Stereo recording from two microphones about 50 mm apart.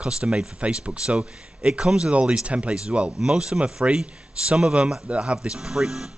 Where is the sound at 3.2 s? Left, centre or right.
Centre.